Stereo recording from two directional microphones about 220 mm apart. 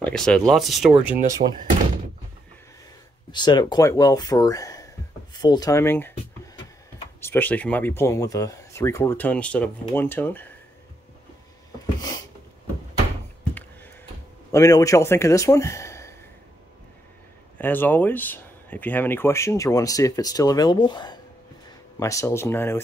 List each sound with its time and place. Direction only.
0.0 s speech: 5° left (ahead or behind)
1.4 s speech: 35° right (ahead or behind)
3.3 s speech: 20° left (ahead or behind)
5.3 s a sound: 20° left (ahead or behind)
7.2 s speech: 10° left (ahead or behind)
14.5 s speech: 15° left (ahead or behind)
17.6 s speech: 10° left (ahead or behind)